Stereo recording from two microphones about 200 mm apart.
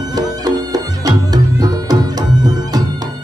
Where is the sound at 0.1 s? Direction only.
20° right (ahead or behind).